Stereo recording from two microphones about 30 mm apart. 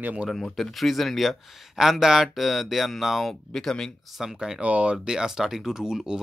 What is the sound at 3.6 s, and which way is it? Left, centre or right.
Speech, centre.